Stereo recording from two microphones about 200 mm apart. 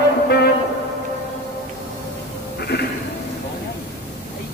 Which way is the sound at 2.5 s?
55° left (ahead or behind).